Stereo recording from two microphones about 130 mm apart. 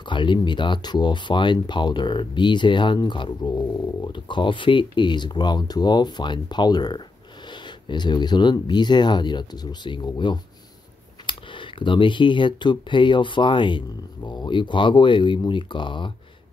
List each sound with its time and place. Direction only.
0.0 s speech: 35° left (ahead or behind)